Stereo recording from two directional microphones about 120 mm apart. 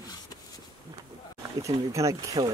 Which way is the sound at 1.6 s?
25° right (ahead or behind).